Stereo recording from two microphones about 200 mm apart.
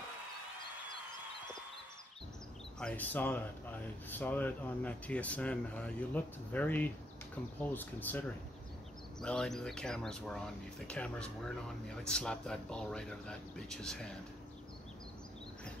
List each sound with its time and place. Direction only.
2.8 s speech: 5° left (ahead or behind)